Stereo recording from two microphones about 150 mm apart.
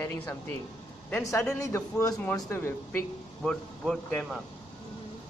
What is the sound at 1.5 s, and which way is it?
Speech, 20° left (ahead or behind).